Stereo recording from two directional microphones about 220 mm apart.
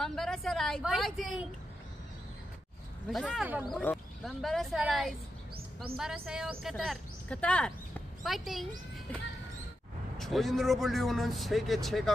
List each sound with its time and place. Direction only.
0.0 s speech: centre (ahead or behind)
3.1 s speech: centre (ahead or behind)
6.2 s speech: centre (ahead or behind)
10.1 s speech: centre (ahead or behind)